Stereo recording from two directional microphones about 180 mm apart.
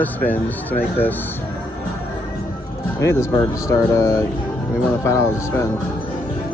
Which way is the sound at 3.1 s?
15° left (ahead or behind).